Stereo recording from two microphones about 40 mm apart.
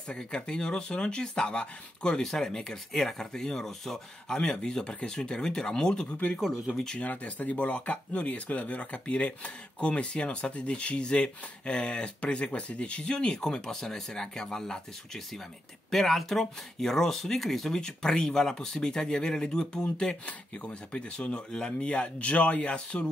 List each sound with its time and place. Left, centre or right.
0.1 s speech: left; by 4.0 s centre
4.3 s speech: centre
6.1 s speech: left; by 17.7 s centre
17.7 s speech: centre